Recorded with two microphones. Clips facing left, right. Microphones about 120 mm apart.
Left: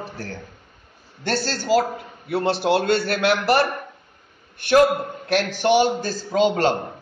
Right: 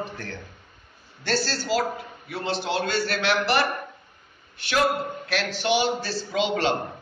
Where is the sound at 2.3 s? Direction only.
60° left (ahead or behind).